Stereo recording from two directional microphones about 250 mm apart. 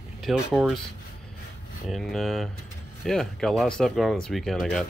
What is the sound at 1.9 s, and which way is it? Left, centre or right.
Speech, centre.